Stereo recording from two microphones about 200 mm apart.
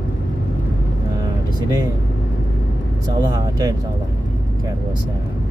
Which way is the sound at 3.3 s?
20° right (ahead or behind).